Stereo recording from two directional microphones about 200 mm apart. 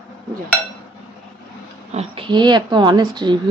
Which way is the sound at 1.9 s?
30° right (ahead or behind).